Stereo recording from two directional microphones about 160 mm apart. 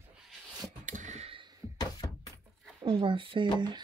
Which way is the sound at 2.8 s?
30° right (ahead or behind).